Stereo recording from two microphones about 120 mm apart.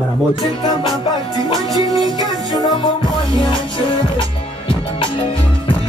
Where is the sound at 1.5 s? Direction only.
30° right (ahead or behind).